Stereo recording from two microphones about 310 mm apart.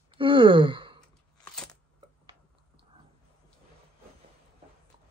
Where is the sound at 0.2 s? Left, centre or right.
Centre.